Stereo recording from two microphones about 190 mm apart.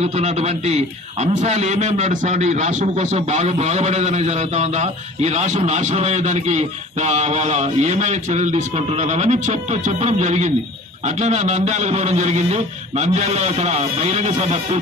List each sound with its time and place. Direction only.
0.0 s a man's voice: 35° right (ahead or behind)